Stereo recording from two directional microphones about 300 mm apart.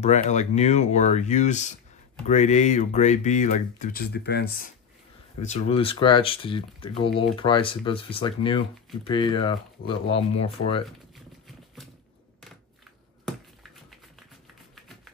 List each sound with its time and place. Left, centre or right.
0.0 s speech: left
5.4 s speech: left
13.2 s a sound: centre